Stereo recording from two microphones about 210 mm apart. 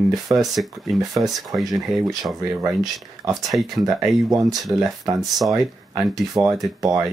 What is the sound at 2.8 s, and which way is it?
Speech, 15° right (ahead or behind).